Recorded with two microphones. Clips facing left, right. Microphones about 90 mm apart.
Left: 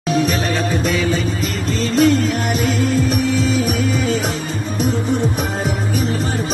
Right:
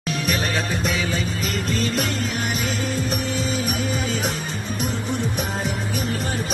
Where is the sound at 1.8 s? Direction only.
45° left (ahead or behind).